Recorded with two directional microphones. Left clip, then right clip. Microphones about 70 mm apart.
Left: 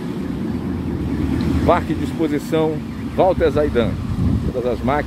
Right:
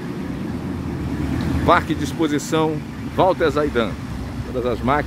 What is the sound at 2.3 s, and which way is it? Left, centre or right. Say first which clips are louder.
Speech: left 2 dB; right.